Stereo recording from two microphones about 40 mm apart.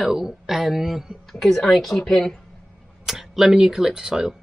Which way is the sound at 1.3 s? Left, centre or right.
Centre.